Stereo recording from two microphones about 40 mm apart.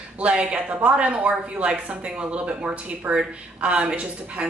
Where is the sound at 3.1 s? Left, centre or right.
Right.